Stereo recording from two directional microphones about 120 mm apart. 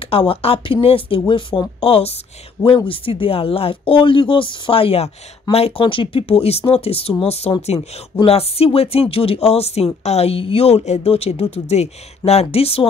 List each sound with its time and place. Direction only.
0.0 s speech: 50° left (ahead or behind)